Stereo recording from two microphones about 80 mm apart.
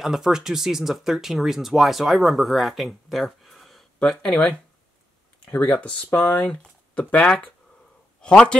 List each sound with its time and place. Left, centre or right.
0.0 s speech: centre